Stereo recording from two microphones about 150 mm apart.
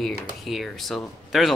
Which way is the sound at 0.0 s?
Centre (ahead or behind).